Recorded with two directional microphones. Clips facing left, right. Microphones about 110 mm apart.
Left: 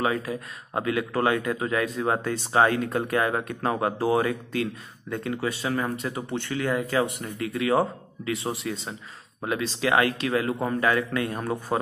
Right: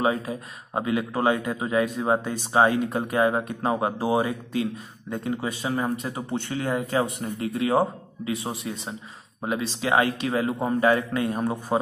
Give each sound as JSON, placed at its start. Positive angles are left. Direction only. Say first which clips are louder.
{"t": 0.0, "sound": "a man's voice", "louder": "right 2 dB", "side_deg": -25}